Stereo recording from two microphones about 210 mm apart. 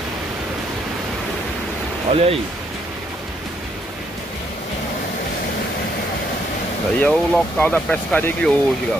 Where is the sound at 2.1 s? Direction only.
30° right (ahead or behind).